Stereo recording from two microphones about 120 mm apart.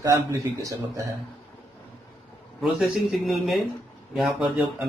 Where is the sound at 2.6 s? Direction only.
5° right (ahead or behind).